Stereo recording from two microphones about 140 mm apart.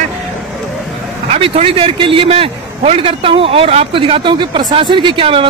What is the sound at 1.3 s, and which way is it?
A man's voice, 40° right (ahead or behind).